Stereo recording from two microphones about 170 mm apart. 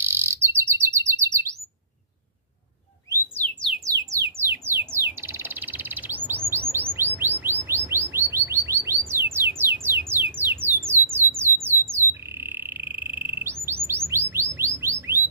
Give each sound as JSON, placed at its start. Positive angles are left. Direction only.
{"t": 0.0, "sound": "chirp", "side_deg": -15}
{"t": 3.2, "sound": "bird", "side_deg": 10}
{"t": 3.7, "sound": "bird", "side_deg": -20}
{"t": 6.7, "sound": "chirp", "side_deg": -15}
{"t": 11.1, "sound": "squawk", "side_deg": -15}
{"t": 13.8, "sound": "bird", "side_deg": -15}